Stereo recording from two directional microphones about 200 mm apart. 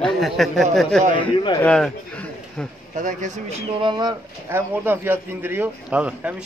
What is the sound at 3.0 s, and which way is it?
Speech, 40° right (ahead or behind).